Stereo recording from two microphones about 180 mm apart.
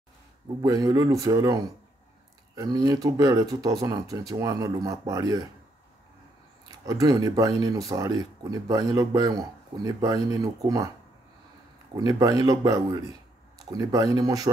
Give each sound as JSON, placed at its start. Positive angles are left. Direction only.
{"t": 0.6, "sound": "speech", "side_deg": -20}
{"t": 6.7, "sound": "speech", "side_deg": -20}
{"t": 11.9, "sound": "speech", "side_deg": -20}